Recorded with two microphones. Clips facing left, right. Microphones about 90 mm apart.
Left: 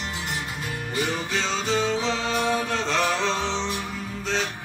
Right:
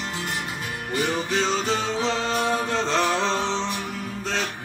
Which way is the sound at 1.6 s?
30° right (ahead or behind).